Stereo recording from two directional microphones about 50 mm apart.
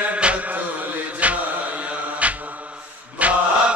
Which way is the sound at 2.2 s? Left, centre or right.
Right.